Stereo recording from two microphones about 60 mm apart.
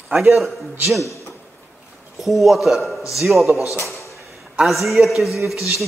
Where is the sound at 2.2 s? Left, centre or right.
Centre.